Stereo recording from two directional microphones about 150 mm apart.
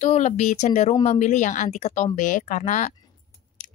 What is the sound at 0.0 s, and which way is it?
Speech, 50° left (ahead or behind).